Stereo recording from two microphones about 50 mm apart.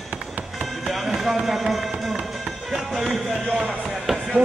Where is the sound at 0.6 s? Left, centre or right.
Centre.